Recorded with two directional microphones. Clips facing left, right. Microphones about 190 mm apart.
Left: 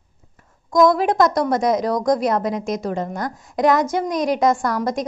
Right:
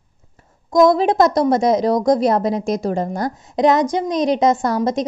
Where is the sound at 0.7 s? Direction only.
25° right (ahead or behind).